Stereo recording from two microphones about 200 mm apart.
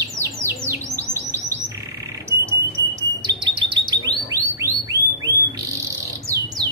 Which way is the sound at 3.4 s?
20° right (ahead or behind).